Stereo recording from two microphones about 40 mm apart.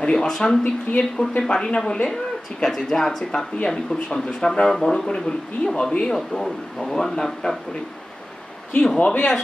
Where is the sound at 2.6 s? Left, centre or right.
Centre.